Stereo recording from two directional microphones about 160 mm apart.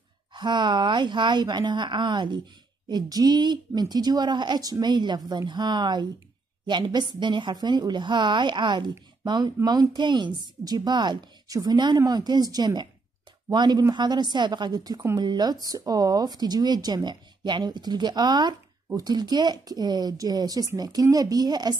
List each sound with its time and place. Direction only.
0.3 s a woman's voice: 30° right (ahead or behind)